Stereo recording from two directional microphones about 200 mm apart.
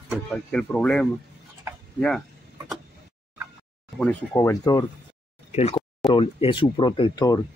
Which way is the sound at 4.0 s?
10° left (ahead or behind).